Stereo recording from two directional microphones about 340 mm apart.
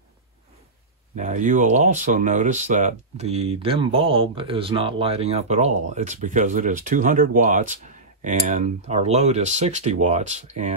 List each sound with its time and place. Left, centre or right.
1.1 s speech: right